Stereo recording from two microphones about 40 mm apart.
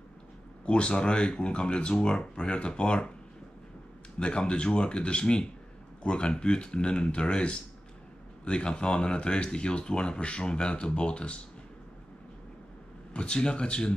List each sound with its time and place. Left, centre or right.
0.7 s speech: left
4.2 s speech: left
13.1 s speech: left